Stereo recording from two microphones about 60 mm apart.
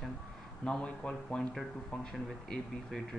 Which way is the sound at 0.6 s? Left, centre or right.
Centre.